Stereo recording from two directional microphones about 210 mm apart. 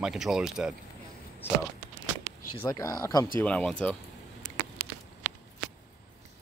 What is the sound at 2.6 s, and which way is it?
Speech, 15° left (ahead or behind).